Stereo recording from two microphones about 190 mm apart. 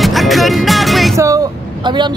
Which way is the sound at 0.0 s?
Centre (ahead or behind).